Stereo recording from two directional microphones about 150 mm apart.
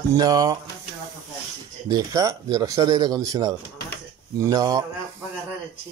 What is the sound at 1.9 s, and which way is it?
Speech, 25° right (ahead or behind).